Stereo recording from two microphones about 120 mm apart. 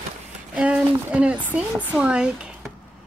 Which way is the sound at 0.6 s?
10° right (ahead or behind).